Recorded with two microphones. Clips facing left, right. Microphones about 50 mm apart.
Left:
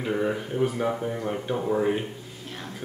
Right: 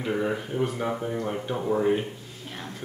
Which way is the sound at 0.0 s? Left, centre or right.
Centre.